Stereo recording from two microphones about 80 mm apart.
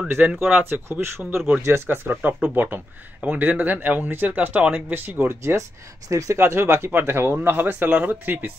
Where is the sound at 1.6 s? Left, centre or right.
Right.